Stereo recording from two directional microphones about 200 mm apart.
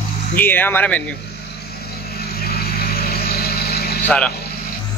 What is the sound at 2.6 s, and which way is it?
Vehicle, 50° left (ahead or behind).